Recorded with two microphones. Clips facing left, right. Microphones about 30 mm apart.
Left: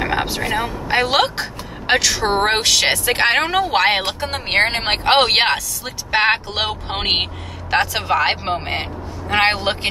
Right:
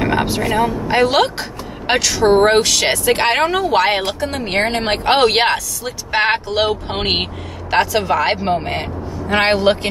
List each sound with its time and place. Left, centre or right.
0.0 s vehicle: centre
0.4 s speech: centre
2.4 s speech: centre
3.1 s speech: centre
8.0 s speech: centre
9.3 s speech: centre